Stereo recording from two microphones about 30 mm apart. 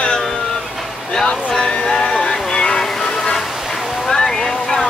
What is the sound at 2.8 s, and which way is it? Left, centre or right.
Music, centre.